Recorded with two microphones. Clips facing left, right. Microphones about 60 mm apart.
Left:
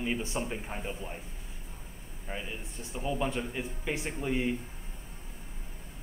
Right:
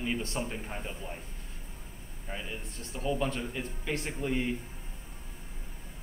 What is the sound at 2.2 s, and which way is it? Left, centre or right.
A man's voice, centre.